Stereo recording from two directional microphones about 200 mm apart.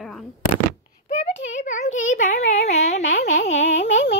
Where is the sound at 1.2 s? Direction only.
35° left (ahead or behind).